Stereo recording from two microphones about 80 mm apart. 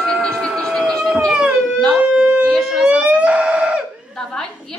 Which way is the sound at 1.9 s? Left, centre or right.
Centre.